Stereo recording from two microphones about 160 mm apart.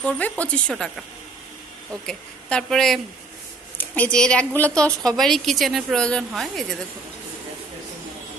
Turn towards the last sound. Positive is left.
turn(degrees=0)  # may be behind; listen again after turning